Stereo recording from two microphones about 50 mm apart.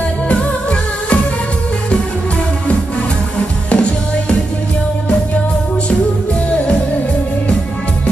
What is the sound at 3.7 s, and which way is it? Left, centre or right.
Music, left.